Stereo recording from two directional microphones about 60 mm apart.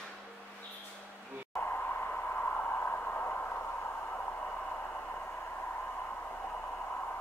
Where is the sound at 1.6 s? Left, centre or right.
Left.